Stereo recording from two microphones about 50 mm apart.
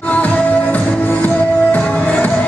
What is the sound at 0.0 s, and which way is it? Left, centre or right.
Music, left.